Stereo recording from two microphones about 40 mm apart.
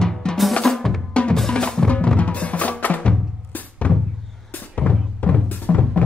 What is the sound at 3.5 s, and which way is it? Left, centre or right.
Music, left.